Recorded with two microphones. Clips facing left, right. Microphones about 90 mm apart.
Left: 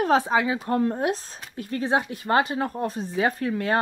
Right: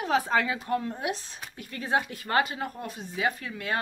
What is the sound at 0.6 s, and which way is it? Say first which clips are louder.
Speech: left 6 dB; 40° left (ahead or behind).